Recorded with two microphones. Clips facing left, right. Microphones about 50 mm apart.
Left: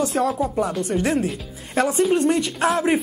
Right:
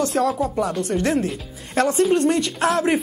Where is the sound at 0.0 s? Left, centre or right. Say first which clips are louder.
Right 1 dB; centre.